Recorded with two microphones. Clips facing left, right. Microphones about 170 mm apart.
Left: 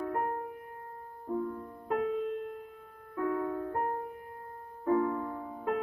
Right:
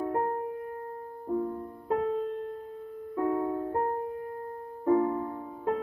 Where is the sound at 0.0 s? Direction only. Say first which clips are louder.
Right 4 dB; 25° right (ahead or behind).